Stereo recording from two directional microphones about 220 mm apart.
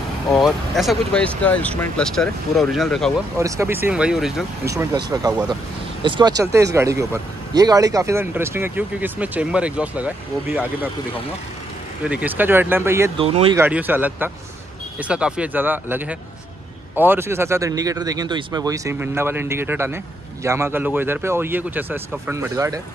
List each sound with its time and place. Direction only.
0.4 s speech: centre (ahead or behind)
3.3 s speech: 15° right (ahead or behind)
4.6 s speech: 15° right (ahead or behind)
12.0 s speech: 5° right (ahead or behind)
13.2 s speech: 25° right (ahead or behind)
13.6 s speech: 10° right (ahead or behind)